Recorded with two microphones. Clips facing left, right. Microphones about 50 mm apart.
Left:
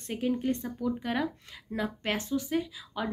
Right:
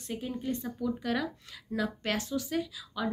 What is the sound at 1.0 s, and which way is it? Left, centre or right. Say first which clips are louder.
A woman's voice: left 1 dB; left.